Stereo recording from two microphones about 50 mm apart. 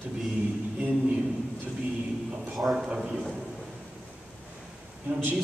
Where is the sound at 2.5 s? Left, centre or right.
Centre.